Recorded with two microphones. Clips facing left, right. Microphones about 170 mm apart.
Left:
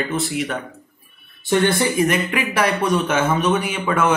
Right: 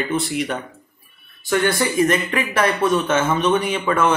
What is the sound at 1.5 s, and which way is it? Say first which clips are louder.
Speech: left 1 dB; 25° left (ahead or behind).